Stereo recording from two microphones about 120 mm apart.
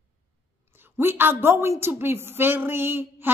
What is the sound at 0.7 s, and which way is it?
A woman's voice, 20° right (ahead or behind).